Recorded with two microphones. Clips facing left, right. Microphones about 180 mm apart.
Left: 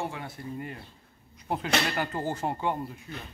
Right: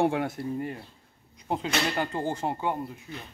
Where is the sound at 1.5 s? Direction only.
20° right (ahead or behind).